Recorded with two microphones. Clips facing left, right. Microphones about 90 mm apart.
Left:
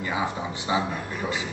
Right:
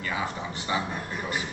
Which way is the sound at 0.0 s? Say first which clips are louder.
Left 3 dB; 20° left (ahead or behind).